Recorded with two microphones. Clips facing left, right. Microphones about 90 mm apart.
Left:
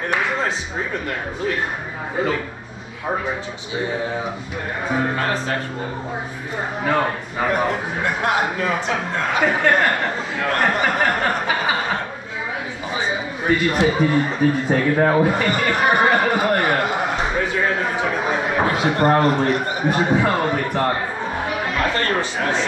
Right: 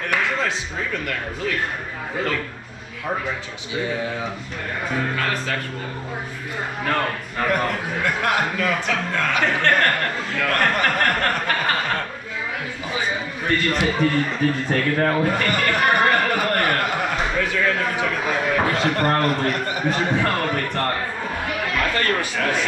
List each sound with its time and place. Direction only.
1.0 s speech: 20° left (ahead or behind)
4.8 s speech: 15° left (ahead or behind)
6.8 s a man's voice: 10° left (ahead or behind)
9.4 s a man's voice: 10° left (ahead or behind)
13.5 s a man's voice: 10° left (ahead or behind)
17.4 s a sound: 20° left (ahead or behind)
21.5 s chatter: 20° left (ahead or behind)